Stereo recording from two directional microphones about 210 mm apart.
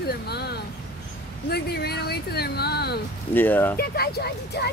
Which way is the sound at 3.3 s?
10° left (ahead or behind).